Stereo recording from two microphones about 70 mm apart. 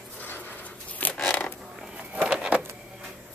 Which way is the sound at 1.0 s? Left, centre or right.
Left.